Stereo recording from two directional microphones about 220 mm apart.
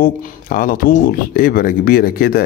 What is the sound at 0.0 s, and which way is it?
Speech, 40° left (ahead or behind).